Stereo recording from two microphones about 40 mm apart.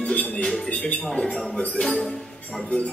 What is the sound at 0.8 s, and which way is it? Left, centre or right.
Speech, left.